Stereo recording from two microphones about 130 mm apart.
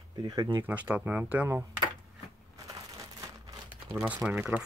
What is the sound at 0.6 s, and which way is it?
Speech, 10° right (ahead or behind).